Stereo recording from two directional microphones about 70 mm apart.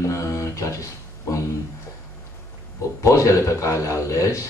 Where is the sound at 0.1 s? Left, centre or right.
Left.